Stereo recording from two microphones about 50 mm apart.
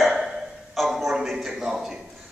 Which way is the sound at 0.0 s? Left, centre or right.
Centre.